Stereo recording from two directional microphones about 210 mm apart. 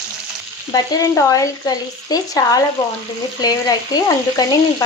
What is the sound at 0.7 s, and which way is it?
Speech, 15° left (ahead or behind).